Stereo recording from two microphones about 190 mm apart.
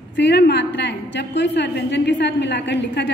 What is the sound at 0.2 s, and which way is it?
A woman's voice, 65° left (ahead or behind).